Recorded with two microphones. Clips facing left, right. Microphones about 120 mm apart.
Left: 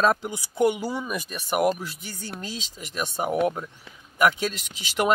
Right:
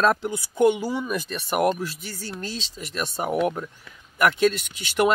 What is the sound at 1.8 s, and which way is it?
Speech, 15° left (ahead or behind).